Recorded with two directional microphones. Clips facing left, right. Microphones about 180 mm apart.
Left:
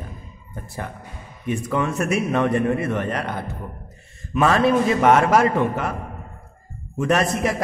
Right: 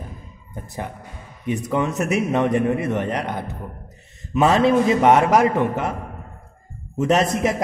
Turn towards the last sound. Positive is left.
turn(degrees=-20)  # may be behind; listen again after turning